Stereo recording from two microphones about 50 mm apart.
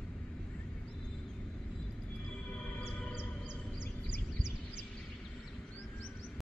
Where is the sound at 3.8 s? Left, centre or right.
Left.